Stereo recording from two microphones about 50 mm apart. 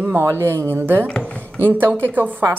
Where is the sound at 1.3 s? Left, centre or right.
Left.